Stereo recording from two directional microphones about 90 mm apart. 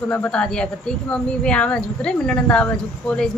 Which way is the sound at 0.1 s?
15° left (ahead or behind).